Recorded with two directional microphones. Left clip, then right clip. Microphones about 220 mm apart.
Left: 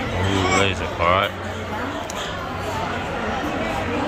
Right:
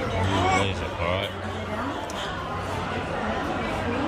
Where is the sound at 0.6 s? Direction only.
5° right (ahead or behind).